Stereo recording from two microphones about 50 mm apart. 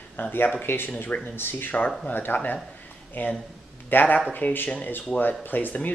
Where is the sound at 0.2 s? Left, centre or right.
Left.